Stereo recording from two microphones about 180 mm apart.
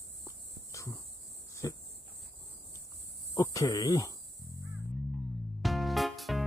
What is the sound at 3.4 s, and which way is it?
Speech, 20° left (ahead or behind).